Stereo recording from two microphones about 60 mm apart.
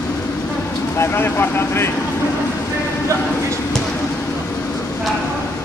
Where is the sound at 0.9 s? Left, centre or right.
Left.